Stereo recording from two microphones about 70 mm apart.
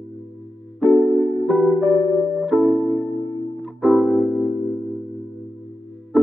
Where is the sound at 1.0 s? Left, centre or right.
Right.